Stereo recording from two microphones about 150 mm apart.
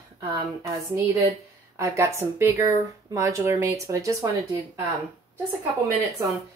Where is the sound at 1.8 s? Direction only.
15° right (ahead or behind).